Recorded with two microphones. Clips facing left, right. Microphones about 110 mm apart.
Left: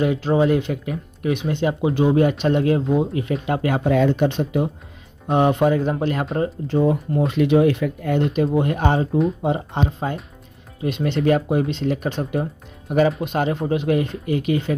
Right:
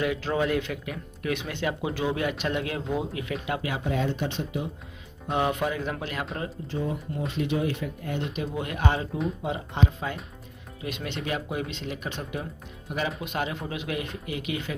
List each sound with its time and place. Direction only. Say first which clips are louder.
0.0 s speech: left 8 dB; 30° left (ahead or behind)
3.4 s speech: left 10 dB; 45° left (ahead or behind)
3.9 s speech: left 11 dB; 70° left (ahead or behind)
5.3 s speech: left 9 dB; 30° left (ahead or behind)
6.7 s speech: left 12 dB; 65° left (ahead or behind)
8.5 s speech: left 9 dB; 40° left (ahead or behind)